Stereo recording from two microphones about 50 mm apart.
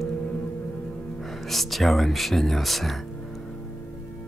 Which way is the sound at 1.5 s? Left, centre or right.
Centre.